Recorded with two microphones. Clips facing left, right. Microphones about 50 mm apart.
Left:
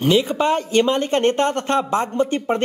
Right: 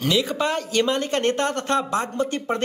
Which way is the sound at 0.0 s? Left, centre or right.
Left.